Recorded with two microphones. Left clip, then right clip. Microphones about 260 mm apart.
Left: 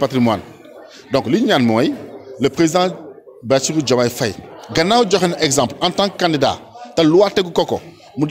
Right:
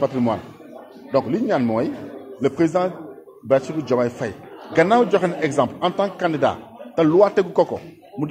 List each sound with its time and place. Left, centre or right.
0.0 s a man's voice: left